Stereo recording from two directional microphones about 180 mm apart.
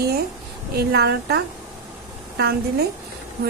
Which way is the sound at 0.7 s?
65° right (ahead or behind).